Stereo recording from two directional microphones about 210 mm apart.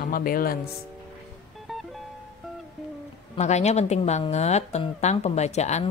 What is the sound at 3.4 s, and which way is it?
Speech, 30° left (ahead or behind).